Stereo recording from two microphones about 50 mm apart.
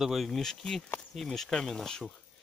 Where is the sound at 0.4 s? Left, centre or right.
Centre.